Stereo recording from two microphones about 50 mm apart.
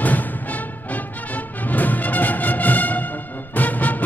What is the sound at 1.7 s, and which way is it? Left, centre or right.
Music, left.